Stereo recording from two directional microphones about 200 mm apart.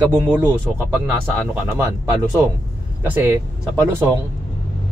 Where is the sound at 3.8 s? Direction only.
10° right (ahead or behind).